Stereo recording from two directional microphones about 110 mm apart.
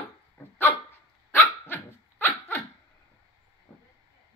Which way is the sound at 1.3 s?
20° left (ahead or behind).